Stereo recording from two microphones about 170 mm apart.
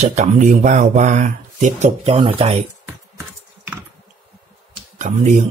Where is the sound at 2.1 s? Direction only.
30° right (ahead or behind).